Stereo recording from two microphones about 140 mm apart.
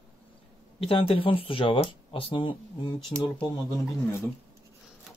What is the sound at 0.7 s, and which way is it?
Speech, 40° left (ahead or behind).